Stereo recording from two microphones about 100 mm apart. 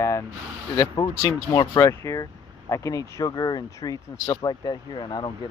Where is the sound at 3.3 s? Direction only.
45° left (ahead or behind).